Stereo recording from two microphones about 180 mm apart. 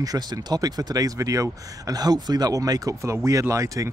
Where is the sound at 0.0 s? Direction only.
20° right (ahead or behind).